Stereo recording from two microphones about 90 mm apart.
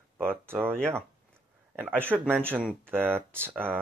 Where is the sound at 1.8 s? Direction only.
20° right (ahead or behind).